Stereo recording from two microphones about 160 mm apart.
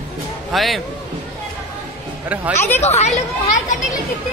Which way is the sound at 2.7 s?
45° left (ahead or behind).